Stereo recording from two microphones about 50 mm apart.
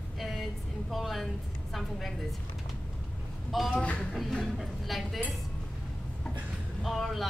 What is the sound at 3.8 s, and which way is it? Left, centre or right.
Speech, left.